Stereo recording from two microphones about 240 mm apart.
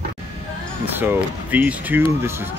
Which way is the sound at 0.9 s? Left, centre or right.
Centre.